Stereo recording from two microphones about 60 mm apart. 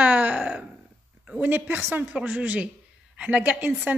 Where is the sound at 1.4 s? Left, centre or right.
Right.